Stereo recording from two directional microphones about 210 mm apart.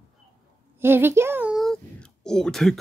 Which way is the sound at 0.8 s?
10° right (ahead or behind).